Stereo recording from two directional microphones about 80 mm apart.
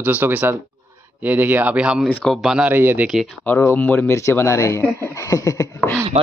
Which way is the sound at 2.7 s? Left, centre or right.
Right.